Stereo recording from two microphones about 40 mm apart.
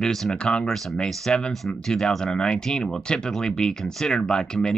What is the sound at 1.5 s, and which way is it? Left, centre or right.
Speech, centre.